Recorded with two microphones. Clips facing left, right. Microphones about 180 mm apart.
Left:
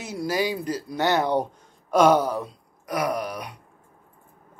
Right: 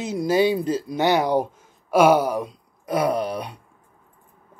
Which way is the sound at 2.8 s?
25° right (ahead or behind).